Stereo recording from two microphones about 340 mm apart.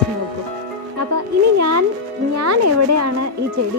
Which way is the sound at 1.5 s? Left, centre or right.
Right.